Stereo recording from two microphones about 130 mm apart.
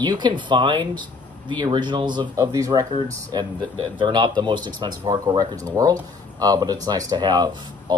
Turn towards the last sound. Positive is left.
turn(degrees=-35)  # may be behind; listen again after turning